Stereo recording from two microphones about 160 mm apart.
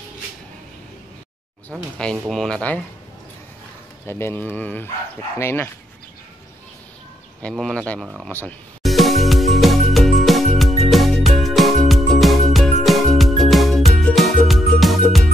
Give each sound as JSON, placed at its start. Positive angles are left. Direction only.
{"t": 2.0, "sound": "speech", "side_deg": 5}
{"t": 4.1, "sound": "speech", "side_deg": 15}
{"t": 7.4, "sound": "speech", "side_deg": 5}
{"t": 8.8, "sound": "music", "side_deg": 0}